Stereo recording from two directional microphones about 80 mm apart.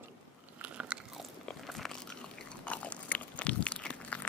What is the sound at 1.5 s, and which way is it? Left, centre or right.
Crunch, centre.